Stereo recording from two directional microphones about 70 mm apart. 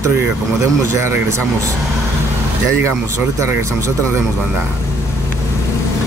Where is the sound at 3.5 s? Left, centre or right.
Right.